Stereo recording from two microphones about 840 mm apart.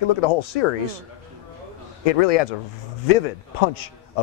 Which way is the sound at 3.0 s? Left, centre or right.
Left.